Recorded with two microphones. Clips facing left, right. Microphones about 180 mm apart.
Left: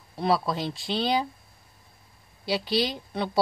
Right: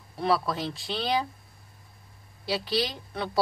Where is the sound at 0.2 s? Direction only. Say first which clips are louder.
Left 1 dB; 20° left (ahead or behind).